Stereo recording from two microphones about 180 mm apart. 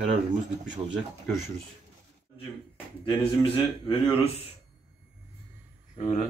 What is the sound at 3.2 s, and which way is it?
Speech, 30° left (ahead or behind).